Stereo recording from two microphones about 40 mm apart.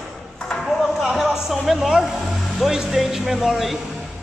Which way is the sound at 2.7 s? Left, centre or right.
Centre.